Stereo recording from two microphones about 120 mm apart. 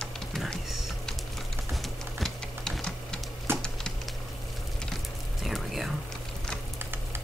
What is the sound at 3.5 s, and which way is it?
Music, 20° right (ahead or behind).